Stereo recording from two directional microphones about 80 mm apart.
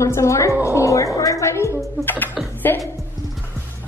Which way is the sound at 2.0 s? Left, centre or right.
Left.